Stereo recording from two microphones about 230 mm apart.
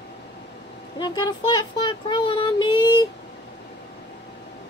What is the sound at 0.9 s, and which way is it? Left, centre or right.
Speech, centre.